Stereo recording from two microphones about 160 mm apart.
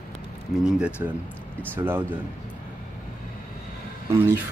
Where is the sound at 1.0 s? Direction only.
15° right (ahead or behind).